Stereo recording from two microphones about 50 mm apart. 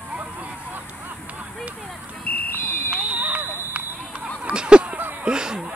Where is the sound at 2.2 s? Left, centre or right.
Left.